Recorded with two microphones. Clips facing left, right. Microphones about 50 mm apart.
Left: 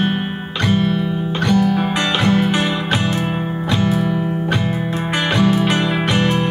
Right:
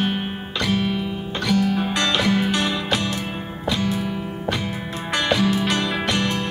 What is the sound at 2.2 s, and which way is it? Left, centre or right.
Music, left.